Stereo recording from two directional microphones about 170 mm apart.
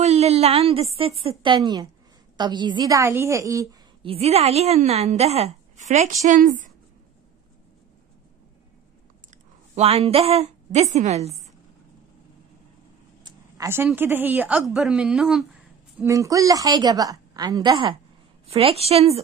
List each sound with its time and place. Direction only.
0.0 s a woman's voice: 40° right (ahead or behind); by 3.6 s 20° right (ahead or behind)
4.0 s a woman's voice: 35° right (ahead or behind)
9.8 s a woman's voice: 35° right (ahead or behind)
13.2 s a sound: 15° right (ahead or behind)
13.9 s a woman's voice: 10° right (ahead or behind)
16.0 s a woman's voice: 20° right (ahead or behind); by 19.2 s 35° right (ahead or behind)